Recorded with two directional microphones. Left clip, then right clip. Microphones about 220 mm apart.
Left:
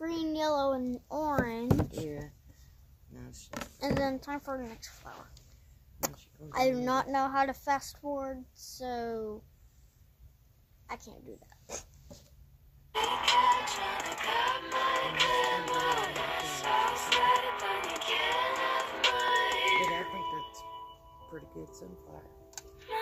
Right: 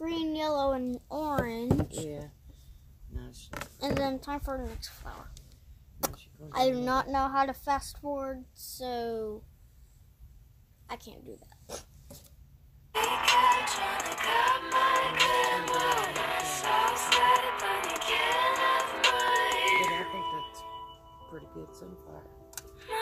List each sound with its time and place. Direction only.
0.1 s a sound: centre (ahead or behind)
3.2 s a sound: 25° left (ahead or behind)
3.5 s speech: centre (ahead or behind)
10.9 s a woman's voice: 5° right (ahead or behind)
11.6 s dog: 10° right (ahead or behind)
12.9 s music: 10° right (ahead or behind)